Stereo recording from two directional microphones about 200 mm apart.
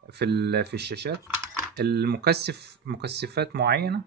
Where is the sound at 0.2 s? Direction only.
55° right (ahead or behind).